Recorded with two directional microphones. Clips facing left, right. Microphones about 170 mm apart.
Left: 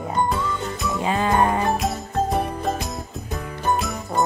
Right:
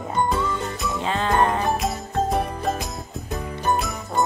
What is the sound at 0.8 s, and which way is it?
Music, 5° left (ahead or behind).